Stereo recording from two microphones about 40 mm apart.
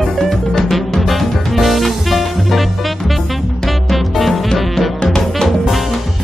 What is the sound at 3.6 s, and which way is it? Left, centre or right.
Music, centre.